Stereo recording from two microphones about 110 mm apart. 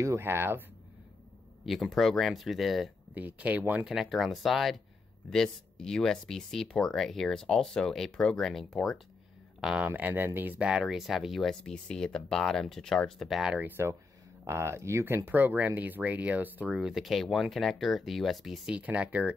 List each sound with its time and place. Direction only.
0.0 s speech: 25° right (ahead or behind)
1.7 s speech: centre (ahead or behind)
3.2 s speech: 15° right (ahead or behind)
3.8 s speech: 5° right (ahead or behind)
9.8 s speech: 15° right (ahead or behind)
10.7 s speech: 5° right (ahead or behind)
13.6 s speech: 20° right (ahead or behind); by 18.6 s centre (ahead or behind)
18.7 s speech: 10° right (ahead or behind)